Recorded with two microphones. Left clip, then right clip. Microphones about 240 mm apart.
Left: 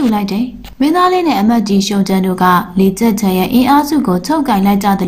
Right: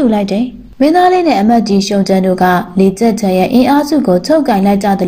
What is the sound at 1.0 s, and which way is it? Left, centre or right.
Speech, left.